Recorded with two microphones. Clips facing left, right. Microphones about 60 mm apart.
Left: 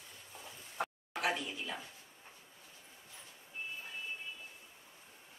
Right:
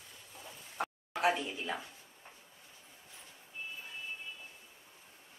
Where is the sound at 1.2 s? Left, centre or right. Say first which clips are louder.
Right 5 dB; right.